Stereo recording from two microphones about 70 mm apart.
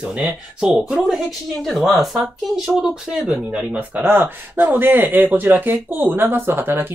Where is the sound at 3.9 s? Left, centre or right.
Right.